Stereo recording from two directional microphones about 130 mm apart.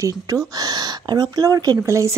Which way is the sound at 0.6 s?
30° right (ahead or behind).